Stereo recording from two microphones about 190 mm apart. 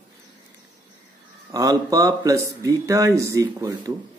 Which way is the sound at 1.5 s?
20° right (ahead or behind).